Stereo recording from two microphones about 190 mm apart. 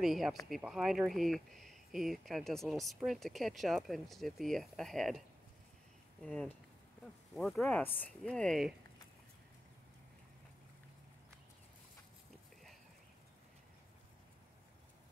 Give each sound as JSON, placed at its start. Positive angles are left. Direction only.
{"t": 0.0, "sound": "speech", "side_deg": 0}
{"t": 6.2, "sound": "speech", "side_deg": 5}